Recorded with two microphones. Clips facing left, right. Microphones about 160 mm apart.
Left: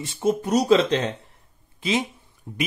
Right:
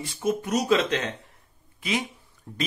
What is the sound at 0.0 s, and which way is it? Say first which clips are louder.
Speech: left 4 dB; 30° left (ahead or behind).